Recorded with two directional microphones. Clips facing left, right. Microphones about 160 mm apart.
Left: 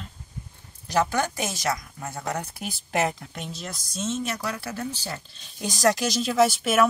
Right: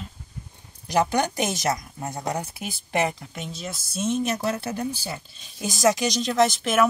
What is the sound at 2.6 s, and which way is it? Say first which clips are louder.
Speech: left 1 dB; centre (ahead or behind).